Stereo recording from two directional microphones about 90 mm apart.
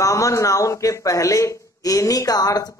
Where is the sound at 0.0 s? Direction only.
35° left (ahead or behind).